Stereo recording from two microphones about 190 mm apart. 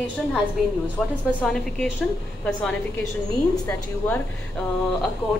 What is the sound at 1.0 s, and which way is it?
Speech, centre (ahead or behind).